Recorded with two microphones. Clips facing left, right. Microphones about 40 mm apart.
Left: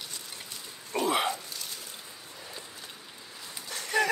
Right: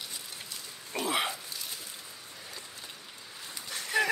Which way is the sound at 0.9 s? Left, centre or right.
Centre.